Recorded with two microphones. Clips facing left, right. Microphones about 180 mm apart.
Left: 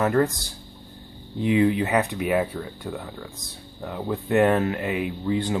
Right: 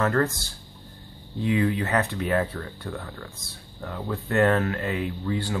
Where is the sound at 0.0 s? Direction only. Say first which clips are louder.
Left 2 dB; 15° left (ahead or behind).